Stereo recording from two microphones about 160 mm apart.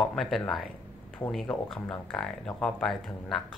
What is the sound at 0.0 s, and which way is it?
Speech, centre (ahead or behind).